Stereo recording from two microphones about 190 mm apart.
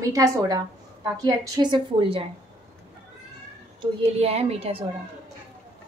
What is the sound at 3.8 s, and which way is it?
A woman's voice, 35° right (ahead or behind).